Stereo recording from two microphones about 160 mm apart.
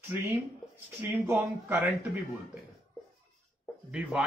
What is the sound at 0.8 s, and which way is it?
A man's voice, 10° right (ahead or behind).